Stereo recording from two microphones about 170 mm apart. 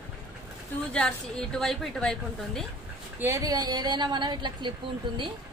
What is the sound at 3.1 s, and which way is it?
Speech, 15° right (ahead or behind).